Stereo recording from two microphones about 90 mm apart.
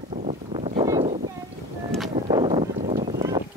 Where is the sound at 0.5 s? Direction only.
55° right (ahead or behind).